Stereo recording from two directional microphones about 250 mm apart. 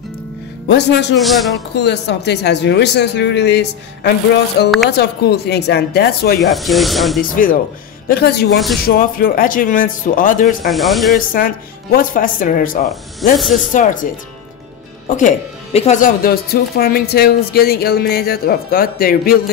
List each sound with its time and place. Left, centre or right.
0.7 s speech: left
1.2 s speech: centre
1.8 s speech: left
6.5 s speech: centre
7.2 s speech: left
10.7 s speech: centre
11.1 s speech: left
13.4 s speech: centre
13.7 s speech: left
15.1 s speech: left